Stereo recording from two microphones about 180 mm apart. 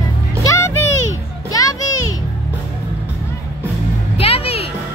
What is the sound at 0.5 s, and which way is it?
Music, 15° left (ahead or behind).